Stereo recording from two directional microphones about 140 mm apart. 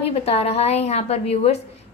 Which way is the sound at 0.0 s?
45° left (ahead or behind).